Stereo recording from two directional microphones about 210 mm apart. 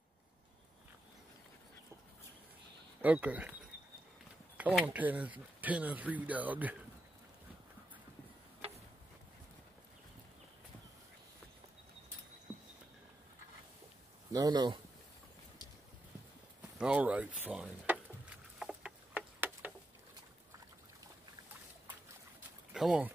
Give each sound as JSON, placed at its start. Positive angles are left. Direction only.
{"t": 3.0, "sound": "speech", "side_deg": -5}
{"t": 4.6, "sound": "speech", "side_deg": -5}
{"t": 12.5, "sound": "a sound", "side_deg": -5}
{"t": 14.3, "sound": "speech", "side_deg": -20}
{"t": 16.7, "sound": "speech", "side_deg": -5}
{"t": 17.4, "sound": "a sound", "side_deg": -5}
{"t": 22.7, "sound": "speech", "side_deg": 0}